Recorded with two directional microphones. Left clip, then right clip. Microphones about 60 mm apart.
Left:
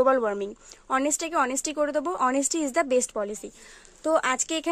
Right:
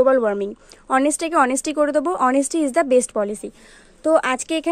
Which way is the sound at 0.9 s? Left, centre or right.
Right.